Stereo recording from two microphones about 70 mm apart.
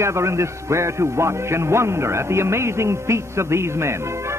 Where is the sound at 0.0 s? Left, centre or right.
Right.